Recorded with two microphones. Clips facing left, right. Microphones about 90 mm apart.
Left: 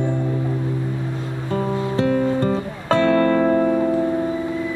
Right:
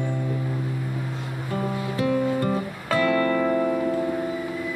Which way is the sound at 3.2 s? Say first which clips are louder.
Left 5 dB; 50° left (ahead or behind).